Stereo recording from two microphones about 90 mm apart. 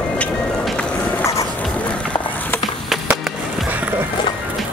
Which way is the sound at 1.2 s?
35° left (ahead or behind).